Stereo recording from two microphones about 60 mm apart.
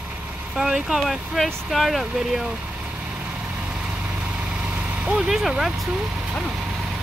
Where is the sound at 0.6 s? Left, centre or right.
Centre.